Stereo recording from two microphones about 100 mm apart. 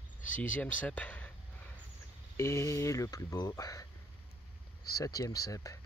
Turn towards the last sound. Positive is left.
turn(degrees=35)  # may be behind; listen again after turning